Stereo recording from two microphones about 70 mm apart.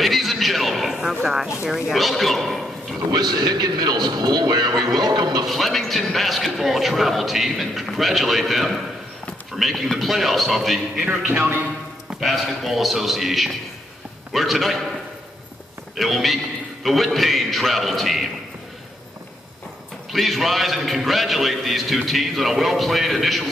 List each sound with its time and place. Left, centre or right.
0.0 s horse: centre
1.6 s a man's voice: centre
3.1 s a man's voice: right
5.5 s a man's voice: centre
11.3 s a man's voice: right
12.2 s a man's voice: centre
16.0 s a man's voice: centre
20.1 s a man's voice: centre